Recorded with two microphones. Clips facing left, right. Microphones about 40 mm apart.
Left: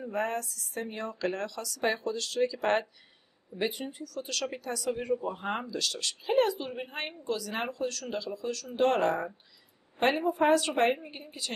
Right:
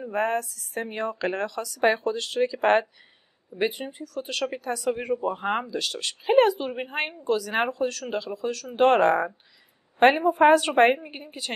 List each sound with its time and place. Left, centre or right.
0.1 s speech: right
9.9 s speech: right